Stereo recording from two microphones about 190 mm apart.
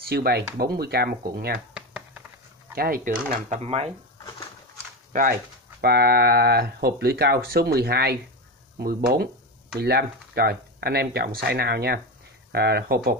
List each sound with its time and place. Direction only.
0.0 s speech: 55° right (ahead or behind)
1.7 s a sound: 5° right (ahead or behind)
2.7 s speech: 50° right (ahead or behind); by 3.9 s 35° right (ahead or behind)
5.8 s speech: 55° right (ahead or behind)